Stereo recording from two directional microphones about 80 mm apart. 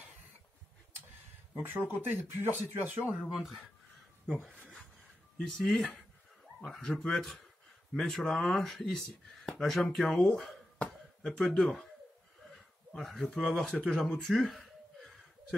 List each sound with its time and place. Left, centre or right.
1.7 s speech: right
3.3 s speech: centre
12.9 s speech: centre